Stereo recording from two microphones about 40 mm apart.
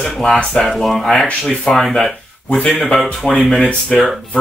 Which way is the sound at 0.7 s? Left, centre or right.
Centre.